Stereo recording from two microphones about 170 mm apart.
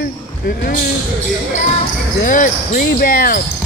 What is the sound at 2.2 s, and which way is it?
Speech, 50° left (ahead or behind).